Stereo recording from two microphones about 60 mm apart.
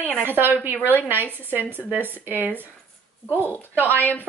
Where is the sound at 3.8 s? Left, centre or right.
Left.